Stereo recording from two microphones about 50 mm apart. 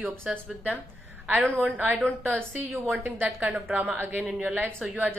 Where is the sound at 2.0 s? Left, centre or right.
Right.